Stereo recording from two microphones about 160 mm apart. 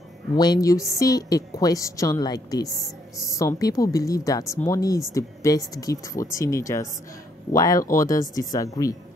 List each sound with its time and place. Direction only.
0.4 s a woman's voice: 25° left (ahead or behind)